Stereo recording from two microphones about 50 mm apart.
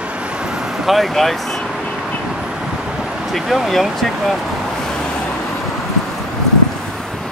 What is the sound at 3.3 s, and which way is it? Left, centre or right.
Speech, centre.